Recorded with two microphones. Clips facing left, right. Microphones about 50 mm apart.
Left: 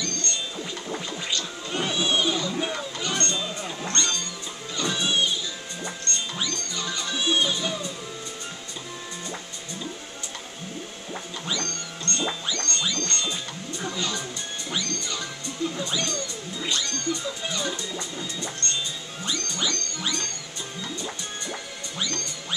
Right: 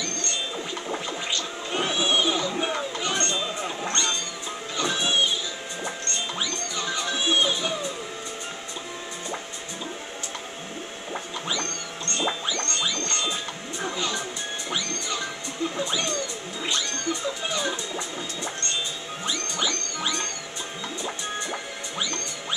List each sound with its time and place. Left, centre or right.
0.8 s music: centre
11.4 s music: centre
15.8 s a sound: centre
16.6 s music: centre